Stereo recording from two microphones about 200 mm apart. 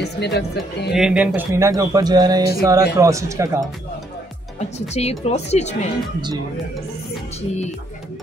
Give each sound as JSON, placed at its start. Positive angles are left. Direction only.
{"t": 0.0, "sound": "speech", "side_deg": 55}
{"t": 0.9, "sound": "speech", "side_deg": -5}
{"t": 4.6, "sound": "speech", "side_deg": 35}